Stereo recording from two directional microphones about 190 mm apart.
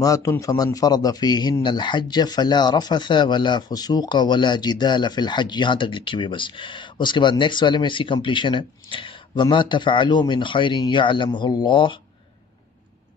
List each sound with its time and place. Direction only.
0.0 s a man's voice: 15° left (ahead or behind)